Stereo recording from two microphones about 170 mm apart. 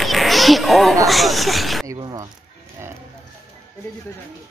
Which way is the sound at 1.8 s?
20° right (ahead or behind).